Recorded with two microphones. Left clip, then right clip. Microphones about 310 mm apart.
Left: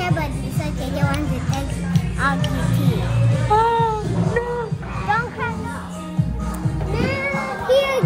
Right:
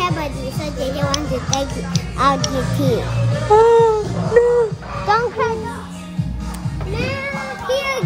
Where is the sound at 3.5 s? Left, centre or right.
Centre.